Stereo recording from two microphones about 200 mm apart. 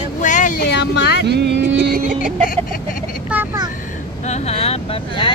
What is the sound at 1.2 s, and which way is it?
Vehicle, 60° right (ahead or behind).